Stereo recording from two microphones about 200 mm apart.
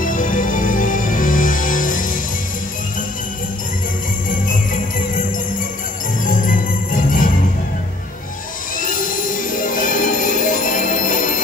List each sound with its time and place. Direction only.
0.0 s music: 40° left (ahead or behind)
6.2 s jingle bell: 45° left (ahead or behind)
8.7 s music: 45° left (ahead or behind)